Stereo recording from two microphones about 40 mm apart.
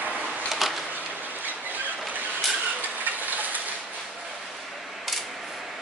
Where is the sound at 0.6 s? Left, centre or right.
Centre.